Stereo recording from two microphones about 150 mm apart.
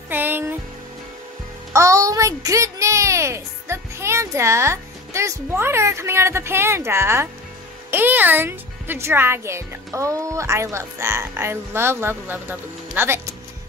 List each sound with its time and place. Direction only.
0.1 s music: 15° right (ahead or behind)
1.7 s a child's voice: 20° right (ahead or behind)